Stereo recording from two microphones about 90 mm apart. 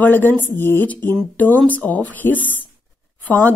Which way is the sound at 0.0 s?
20° left (ahead or behind).